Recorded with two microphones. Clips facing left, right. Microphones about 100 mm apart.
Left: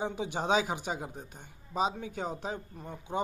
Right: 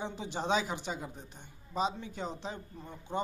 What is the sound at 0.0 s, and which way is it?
A man's voice, 55° left (ahead or behind).